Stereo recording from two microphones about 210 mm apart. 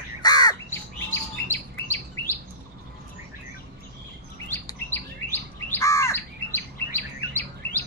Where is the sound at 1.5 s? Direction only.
10° left (ahead or behind).